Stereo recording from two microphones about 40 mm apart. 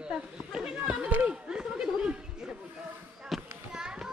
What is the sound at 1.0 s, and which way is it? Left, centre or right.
Speech, right.